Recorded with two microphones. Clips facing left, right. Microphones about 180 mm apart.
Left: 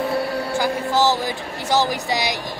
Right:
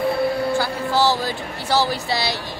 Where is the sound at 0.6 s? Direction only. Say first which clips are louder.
Left 1 dB; 15° left (ahead or behind).